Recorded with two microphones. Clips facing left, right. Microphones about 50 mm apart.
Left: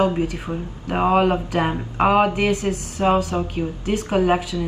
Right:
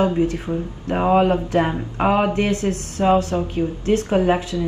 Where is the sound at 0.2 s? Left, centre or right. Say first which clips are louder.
Right 4 dB; left.